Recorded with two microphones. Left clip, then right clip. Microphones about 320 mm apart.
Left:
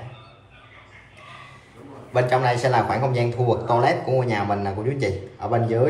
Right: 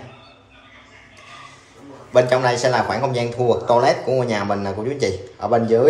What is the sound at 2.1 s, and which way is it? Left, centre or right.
Speech, centre.